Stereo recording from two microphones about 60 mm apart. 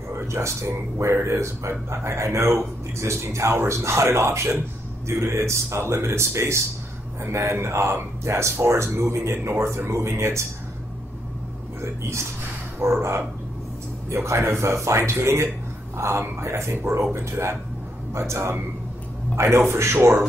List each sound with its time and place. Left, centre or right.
0.3 s speech: right
12.8 s speech: right
14.1 s speech: right